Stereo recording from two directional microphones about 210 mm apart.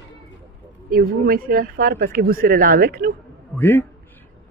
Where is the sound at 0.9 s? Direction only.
45° right (ahead or behind).